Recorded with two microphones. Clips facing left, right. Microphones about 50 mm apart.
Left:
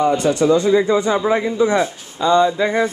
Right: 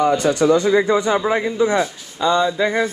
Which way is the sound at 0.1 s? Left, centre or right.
Left.